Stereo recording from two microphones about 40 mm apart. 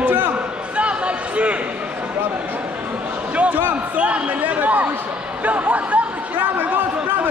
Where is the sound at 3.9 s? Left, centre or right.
Right.